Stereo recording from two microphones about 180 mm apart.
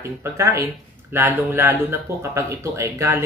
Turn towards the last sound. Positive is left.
turn(degrees=-15)  # may be behind; listen again after turning